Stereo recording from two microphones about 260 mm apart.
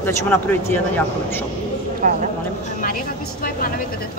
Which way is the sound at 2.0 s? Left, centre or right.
Right.